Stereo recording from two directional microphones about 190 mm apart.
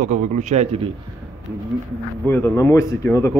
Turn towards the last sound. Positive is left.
turn(degrees=15)  # may be behind; listen again after turning